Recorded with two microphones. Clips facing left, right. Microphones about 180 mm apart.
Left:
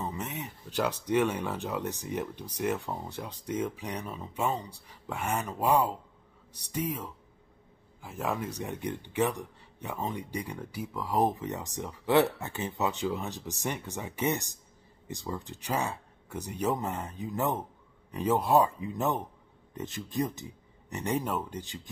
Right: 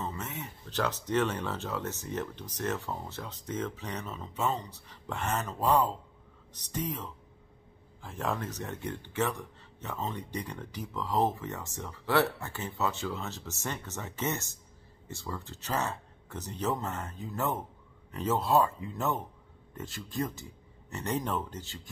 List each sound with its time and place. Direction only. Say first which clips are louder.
0.0 s speech: left 2 dB; 15° left (ahead or behind)